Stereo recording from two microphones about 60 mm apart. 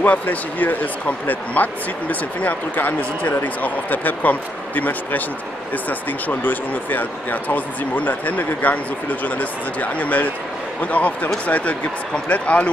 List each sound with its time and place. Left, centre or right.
0.0 s speech: left